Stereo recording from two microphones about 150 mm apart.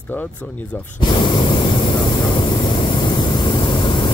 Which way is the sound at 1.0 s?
30° left (ahead or behind).